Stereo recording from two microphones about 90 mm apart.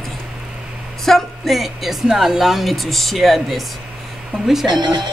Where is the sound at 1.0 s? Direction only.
Centre (ahead or behind).